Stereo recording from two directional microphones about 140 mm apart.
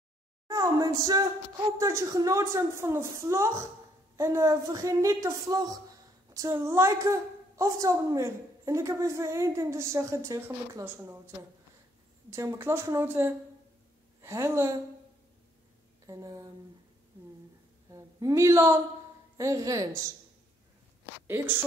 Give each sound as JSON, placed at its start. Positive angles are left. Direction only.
{"t": 0.5, "sound": "a sound", "side_deg": -25}
{"t": 1.8, "sound": "a woman's voice", "side_deg": -20}
{"t": 12.3, "sound": "a woman's voice", "side_deg": -20}
{"t": 16.1, "sound": "a woman's voice", "side_deg": -25}
{"t": 17.9, "sound": "a woman's voice", "side_deg": -20}